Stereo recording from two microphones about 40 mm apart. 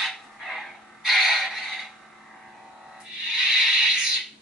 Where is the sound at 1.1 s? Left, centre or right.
Centre.